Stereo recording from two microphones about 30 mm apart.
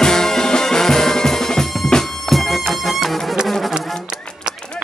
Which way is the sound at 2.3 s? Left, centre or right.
Centre.